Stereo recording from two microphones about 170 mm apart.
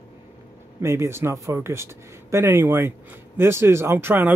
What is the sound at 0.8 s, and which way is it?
Speech, 15° right (ahead or behind).